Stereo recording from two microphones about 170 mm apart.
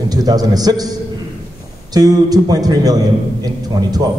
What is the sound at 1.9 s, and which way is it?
A man's voice, 20° right (ahead or behind).